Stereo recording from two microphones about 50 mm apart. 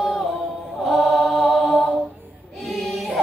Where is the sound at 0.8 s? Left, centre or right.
Centre.